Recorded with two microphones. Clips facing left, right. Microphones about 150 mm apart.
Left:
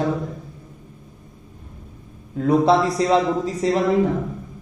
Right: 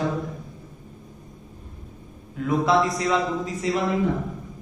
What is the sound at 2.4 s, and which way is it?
A man's voice, 35° left (ahead or behind).